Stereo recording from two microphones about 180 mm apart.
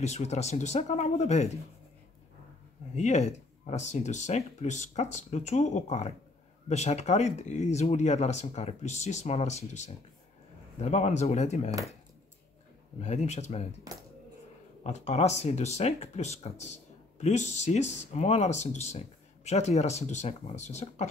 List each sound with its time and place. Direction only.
0.0 s speech: 40° left (ahead or behind)
3.0 s speech: 40° left (ahead or behind)
13.0 s speech: 40° left (ahead or behind)
14.8 s speech: 40° left (ahead or behind)